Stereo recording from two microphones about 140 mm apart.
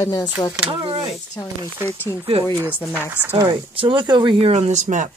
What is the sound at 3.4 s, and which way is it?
Speech, 35° right (ahead or behind).